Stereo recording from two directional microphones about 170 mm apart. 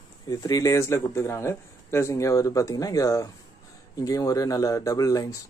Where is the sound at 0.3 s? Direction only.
20° left (ahead or behind).